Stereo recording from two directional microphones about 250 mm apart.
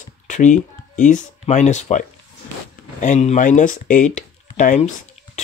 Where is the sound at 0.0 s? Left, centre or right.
Left.